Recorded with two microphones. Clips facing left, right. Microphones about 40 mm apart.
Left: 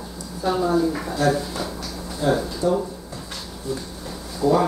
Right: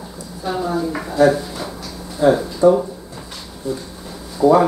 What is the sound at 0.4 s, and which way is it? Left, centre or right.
A woman's voice, centre.